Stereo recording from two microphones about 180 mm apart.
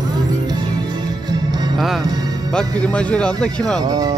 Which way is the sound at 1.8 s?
Centre (ahead or behind).